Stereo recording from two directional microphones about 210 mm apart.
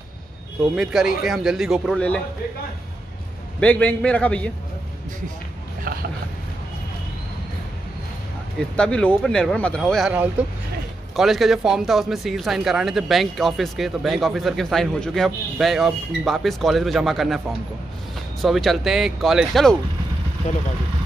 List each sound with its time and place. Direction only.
0.7 s speech: centre (ahead or behind)
3.5 s speech: 5° left (ahead or behind)
5.9 s mechanisms: 45° right (ahead or behind)
8.5 s speech: 5° left (ahead or behind)